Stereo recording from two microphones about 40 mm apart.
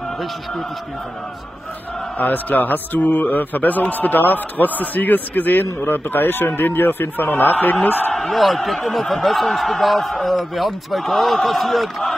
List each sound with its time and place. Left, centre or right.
2.1 s a man's voice: left
8.1 s speech: centre